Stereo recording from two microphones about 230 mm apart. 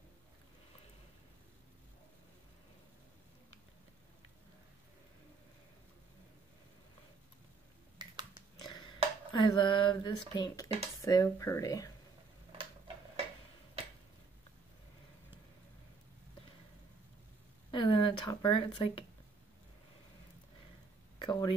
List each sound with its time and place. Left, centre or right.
8.7 s speech: left
12.5 s tick-tock: right
17.6 s speech: left
21.2 s speech: centre